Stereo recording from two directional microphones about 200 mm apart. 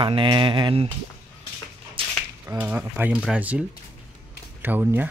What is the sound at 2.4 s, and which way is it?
Speech, 10° right (ahead or behind).